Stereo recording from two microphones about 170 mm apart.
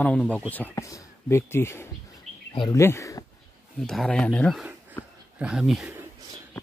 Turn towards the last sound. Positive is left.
turn(degrees=0)  # may be behind; listen again after turning